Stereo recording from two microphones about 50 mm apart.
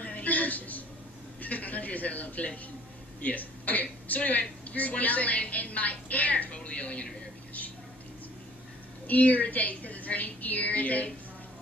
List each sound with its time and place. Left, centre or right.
0.0 s a sound: left
1.4 s a man's voice: left
9.0 s a woman's voice: left